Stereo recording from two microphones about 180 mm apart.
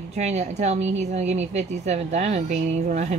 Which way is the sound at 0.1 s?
40° right (ahead or behind).